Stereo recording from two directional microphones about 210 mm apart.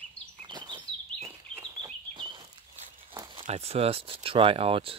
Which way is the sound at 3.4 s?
30° right (ahead or behind).